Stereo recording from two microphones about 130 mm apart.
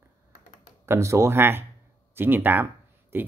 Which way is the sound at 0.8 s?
20° right (ahead or behind).